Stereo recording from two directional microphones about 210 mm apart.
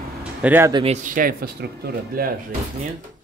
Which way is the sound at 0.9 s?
40° right (ahead or behind).